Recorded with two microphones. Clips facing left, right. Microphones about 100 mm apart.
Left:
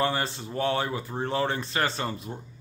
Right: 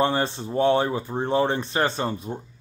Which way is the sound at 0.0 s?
20° right (ahead or behind).